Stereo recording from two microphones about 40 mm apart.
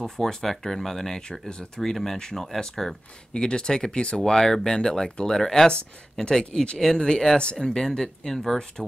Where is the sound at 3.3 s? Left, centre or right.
Left.